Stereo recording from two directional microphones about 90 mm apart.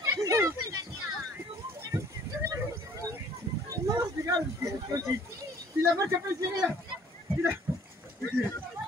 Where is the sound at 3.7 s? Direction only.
40° right (ahead or behind).